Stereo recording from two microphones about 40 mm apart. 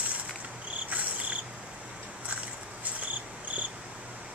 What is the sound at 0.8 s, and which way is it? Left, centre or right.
Cricket, right.